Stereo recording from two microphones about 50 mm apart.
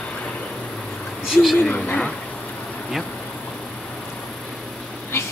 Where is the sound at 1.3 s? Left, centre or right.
Centre.